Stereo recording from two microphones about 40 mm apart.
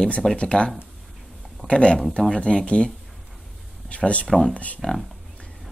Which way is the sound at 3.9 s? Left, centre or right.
Left.